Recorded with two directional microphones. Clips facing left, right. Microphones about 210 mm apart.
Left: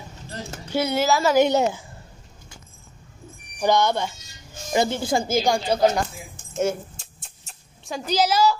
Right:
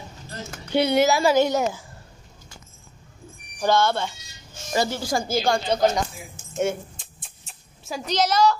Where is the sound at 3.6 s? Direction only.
15° left (ahead or behind).